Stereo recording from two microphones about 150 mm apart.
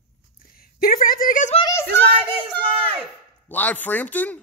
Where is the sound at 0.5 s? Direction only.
75° left (ahead or behind).